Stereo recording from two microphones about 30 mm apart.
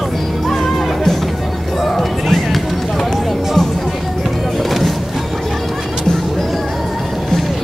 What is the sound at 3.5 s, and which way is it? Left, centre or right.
Music, centre.